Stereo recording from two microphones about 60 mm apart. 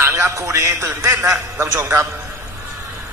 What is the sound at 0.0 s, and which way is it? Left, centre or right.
A man's voice, right.